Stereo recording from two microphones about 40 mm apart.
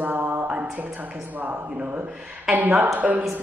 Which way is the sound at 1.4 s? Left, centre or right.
Right.